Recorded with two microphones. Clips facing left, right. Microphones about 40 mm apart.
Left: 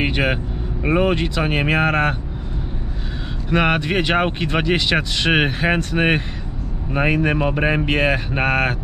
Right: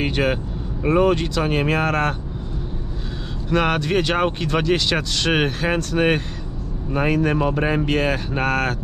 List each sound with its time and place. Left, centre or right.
0.0 s vehicle: centre
0.8 s speech: centre
3.4 s speech: centre